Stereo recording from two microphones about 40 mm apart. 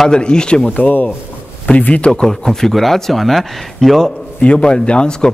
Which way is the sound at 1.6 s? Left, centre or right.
Left.